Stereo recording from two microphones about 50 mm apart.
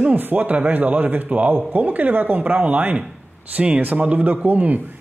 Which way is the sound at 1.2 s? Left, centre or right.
Right.